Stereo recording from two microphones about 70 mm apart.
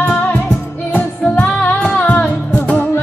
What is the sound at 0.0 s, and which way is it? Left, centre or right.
Music, left.